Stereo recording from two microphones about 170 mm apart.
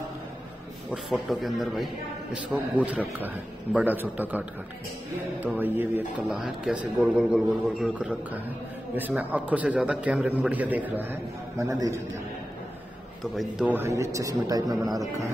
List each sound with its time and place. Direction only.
0.9 s speech: centre (ahead or behind); by 12.0 s 20° right (ahead or behind)
13.2 s speech: centre (ahead or behind)
13.7 s speech: 15° right (ahead or behind)